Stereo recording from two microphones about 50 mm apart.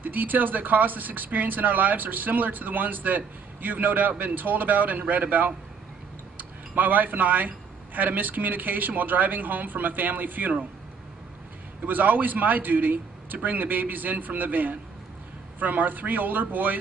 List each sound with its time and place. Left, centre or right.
0.0 s speech: right
11.8 s speech: right